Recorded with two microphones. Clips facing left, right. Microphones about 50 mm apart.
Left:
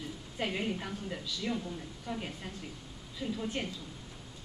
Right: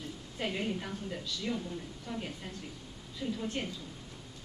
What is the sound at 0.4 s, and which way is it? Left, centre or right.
A woman's voice, centre.